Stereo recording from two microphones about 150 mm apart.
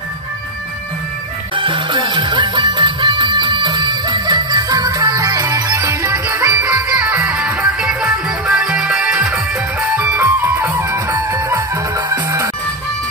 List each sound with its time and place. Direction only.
1.6 s music: 35° right (ahead or behind); by 7.3 s 15° right (ahead or behind)
7.3 s music: 5° right (ahead or behind); by 12.4 s 20° right (ahead or behind)